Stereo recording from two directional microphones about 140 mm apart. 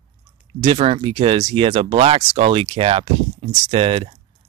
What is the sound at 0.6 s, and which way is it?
Speech, 45° right (ahead or behind).